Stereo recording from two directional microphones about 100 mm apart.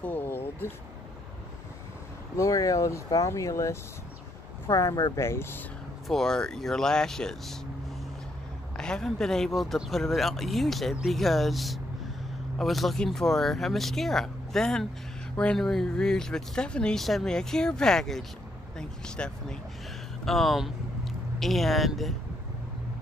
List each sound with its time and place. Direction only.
0.0 s speech: 20° left (ahead or behind)
2.3 s speech: 35° left (ahead or behind)
5.2 s speech: 25° left (ahead or behind)
6.0 s speech: 5° left (ahead or behind)
8.7 s speech: 5° left (ahead or behind)